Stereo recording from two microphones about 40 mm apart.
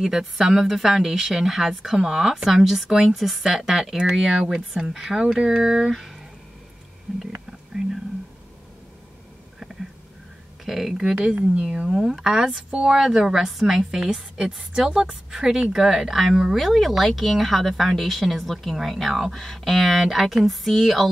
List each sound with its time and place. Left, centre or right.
0.0 s speech: centre
10.6 s a woman's voice: centre; by 15.1 s right
15.3 s speech: centre